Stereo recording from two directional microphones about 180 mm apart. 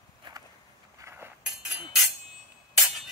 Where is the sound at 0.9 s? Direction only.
15° right (ahead or behind).